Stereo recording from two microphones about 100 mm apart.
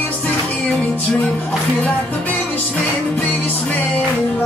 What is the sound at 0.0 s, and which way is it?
Music, 15° left (ahead or behind).